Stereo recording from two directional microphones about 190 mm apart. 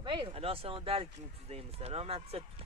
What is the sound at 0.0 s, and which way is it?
Speech, 25° right (ahead or behind).